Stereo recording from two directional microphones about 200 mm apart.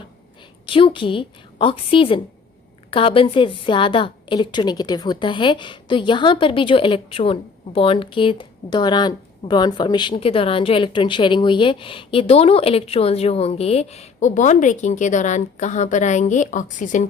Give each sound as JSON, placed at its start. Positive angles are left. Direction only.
{"t": 0.7, "sound": "a woman's voice", "side_deg": 25}